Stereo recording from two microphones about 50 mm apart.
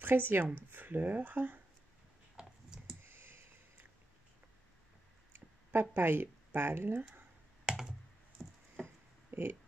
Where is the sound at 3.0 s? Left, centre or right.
Right.